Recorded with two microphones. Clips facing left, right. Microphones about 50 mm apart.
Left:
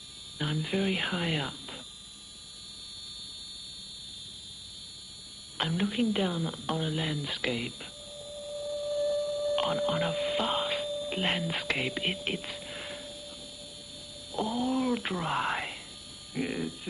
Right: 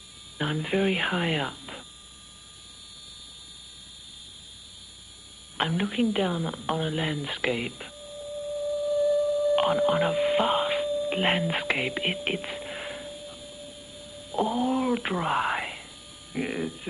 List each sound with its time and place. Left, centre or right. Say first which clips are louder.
0.4 s a woman's voice: right 5 dB; right
5.6 s a woman's voice: right 3 dB; centre
8.9 s music: right 6 dB; right
14.0 s whispering: right 6 dB; right
16.3 s a woman's voice: right 3 dB; centre